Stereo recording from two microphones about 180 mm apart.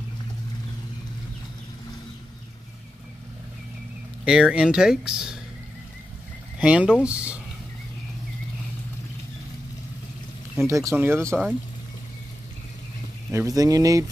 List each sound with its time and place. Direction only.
4.2 s speech: 5° right (ahead or behind)
6.6 s speech: 5° right (ahead or behind)
10.5 s speech: 15° right (ahead or behind)
13.3 s speech: 15° right (ahead or behind)